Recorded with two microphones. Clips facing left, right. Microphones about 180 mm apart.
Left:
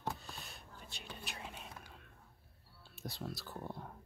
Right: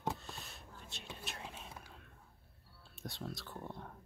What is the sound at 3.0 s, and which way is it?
Speech, centre (ahead or behind).